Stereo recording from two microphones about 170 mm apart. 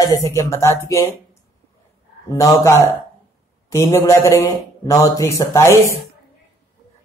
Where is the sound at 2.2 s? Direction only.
20° left (ahead or behind).